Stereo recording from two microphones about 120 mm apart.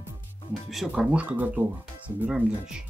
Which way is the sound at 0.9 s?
10° right (ahead or behind).